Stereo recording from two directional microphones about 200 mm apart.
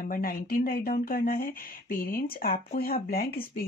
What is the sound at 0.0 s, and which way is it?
Speech, 45° left (ahead or behind).